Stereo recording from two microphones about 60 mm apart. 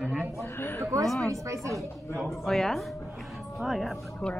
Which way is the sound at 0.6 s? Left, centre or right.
Left.